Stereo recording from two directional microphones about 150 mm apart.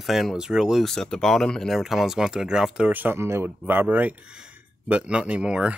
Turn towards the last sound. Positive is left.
turn(degrees=-5)  # may be behind; listen again after turning